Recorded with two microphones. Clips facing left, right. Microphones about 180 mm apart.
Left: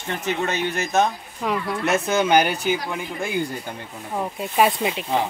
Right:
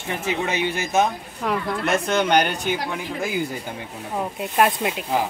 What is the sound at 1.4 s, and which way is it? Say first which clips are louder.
Speech: even; 5° left (ahead or behind).